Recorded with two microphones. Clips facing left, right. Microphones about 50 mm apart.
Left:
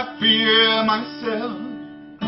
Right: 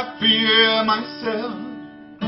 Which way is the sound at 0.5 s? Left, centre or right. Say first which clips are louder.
Right 2 dB; centre.